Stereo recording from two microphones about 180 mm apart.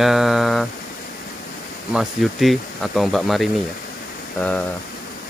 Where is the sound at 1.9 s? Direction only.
Centre (ahead or behind).